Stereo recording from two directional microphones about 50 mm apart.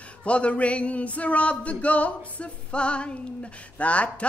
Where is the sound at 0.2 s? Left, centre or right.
Left.